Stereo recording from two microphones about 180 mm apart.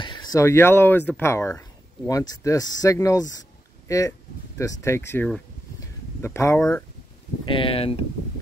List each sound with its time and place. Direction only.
0.0 s speech: 25° left (ahead or behind)
5.8 s a sound: 15° left (ahead or behind)
7.4 s speech: 30° left (ahead or behind)